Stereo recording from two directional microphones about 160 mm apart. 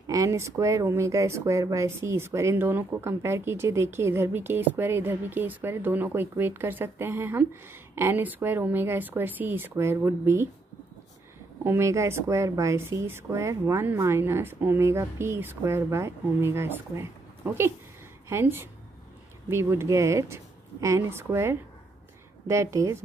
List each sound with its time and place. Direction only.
0.0 s speech: 20° right (ahead or behind)
11.6 s a woman's voice: 20° right (ahead or behind)